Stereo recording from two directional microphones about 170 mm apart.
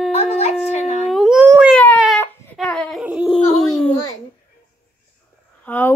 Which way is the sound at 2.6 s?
5° left (ahead or behind).